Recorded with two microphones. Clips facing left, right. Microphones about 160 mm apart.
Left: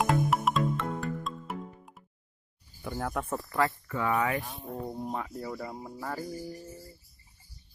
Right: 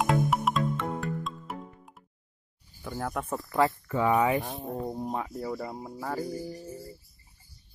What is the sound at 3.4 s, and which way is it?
Speech, 20° right (ahead or behind).